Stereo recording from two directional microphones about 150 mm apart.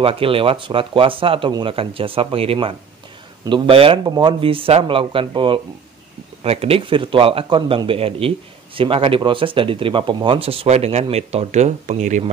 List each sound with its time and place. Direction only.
0.0 s speech: 35° right (ahead or behind)